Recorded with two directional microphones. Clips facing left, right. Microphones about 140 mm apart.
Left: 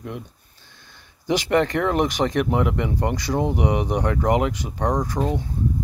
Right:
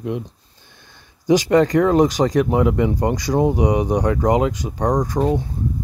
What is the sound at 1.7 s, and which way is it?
Speech, 35° right (ahead or behind).